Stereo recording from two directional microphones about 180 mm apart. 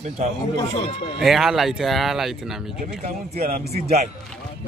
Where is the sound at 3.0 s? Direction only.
40° right (ahead or behind).